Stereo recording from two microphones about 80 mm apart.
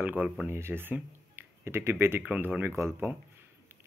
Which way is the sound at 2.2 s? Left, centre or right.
Centre.